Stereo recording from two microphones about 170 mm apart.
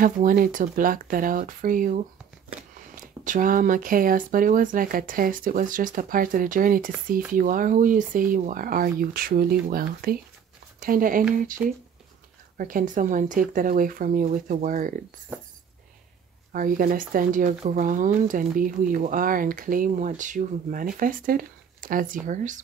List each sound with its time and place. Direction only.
0.0 s speech: 55° right (ahead or behind)
16.5 s speech: 55° right (ahead or behind)